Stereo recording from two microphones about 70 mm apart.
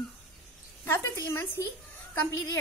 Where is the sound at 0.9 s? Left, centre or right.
Left.